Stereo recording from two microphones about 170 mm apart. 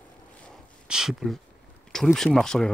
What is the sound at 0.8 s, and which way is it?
Speech, 5° right (ahead or behind).